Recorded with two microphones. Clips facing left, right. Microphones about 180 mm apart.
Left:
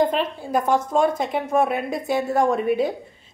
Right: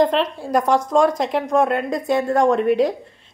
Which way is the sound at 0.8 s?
90° right.